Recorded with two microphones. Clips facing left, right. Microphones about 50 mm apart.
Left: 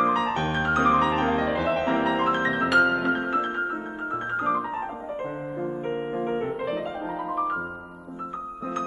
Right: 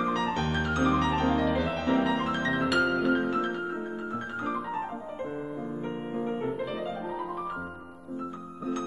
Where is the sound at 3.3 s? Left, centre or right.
Left.